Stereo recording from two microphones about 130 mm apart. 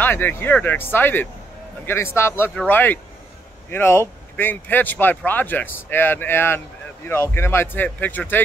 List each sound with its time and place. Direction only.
0.0 s a man's voice: 15° left (ahead or behind)